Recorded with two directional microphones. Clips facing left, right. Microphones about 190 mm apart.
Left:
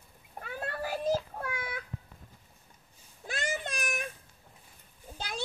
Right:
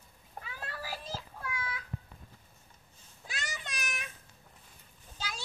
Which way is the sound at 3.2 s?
50° left (ahead or behind).